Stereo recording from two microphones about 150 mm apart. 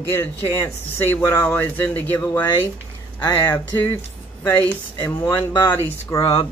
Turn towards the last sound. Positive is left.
turn(degrees=20)  # may be behind; listen again after turning